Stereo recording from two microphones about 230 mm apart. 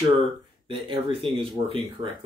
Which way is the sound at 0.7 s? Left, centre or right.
Right.